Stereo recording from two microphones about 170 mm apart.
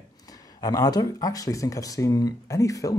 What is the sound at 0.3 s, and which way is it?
Speech, 20° left (ahead or behind).